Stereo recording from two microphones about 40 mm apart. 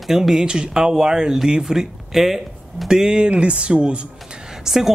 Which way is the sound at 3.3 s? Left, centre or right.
Right.